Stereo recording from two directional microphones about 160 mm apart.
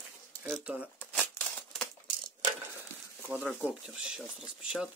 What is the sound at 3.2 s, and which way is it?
Speech, 15° right (ahead or behind).